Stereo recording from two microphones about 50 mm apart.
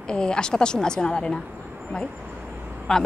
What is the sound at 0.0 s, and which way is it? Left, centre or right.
Speech, centre.